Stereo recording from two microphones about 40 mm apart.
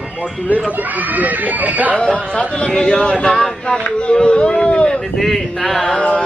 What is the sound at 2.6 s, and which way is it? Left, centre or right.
Speech, centre.